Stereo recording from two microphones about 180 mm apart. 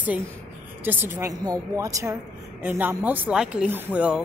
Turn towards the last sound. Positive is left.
turn(degrees=-5)  # may be behind; listen again after turning